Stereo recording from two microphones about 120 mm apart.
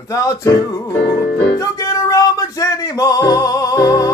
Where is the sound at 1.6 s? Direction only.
30° left (ahead or behind).